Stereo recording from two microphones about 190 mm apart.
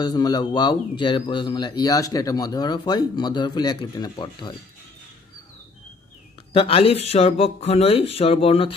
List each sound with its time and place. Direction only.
0.0 s speech: 20° left (ahead or behind)
6.5 s speech: 30° left (ahead or behind)